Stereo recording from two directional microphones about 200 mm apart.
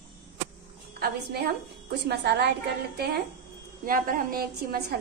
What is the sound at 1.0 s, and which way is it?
A woman's voice, 55° right (ahead or behind).